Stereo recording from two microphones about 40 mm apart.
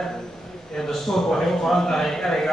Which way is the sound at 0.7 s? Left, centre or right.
Centre.